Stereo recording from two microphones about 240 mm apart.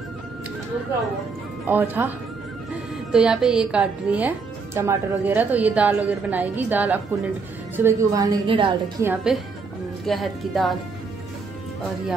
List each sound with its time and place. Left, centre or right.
1.7 s a woman's voice: centre
9.0 s a woman's voice: centre